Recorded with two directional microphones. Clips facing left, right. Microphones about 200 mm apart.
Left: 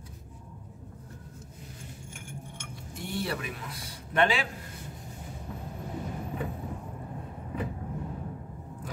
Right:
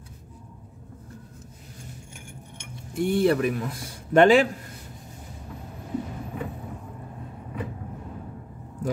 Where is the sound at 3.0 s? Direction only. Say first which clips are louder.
Right 13 dB; 55° right (ahead or behind).